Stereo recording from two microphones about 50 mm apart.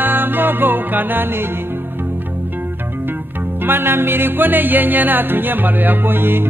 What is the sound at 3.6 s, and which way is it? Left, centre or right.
Music, right.